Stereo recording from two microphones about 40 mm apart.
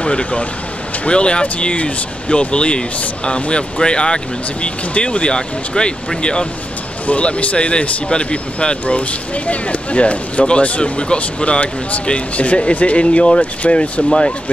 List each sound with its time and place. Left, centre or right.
0.0 s speech: left
3.8 s speech: left
7.1 s speech: left
8.8 s speech: left